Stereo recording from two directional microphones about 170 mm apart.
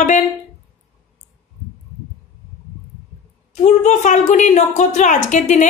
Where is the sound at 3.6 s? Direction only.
45° left (ahead or behind).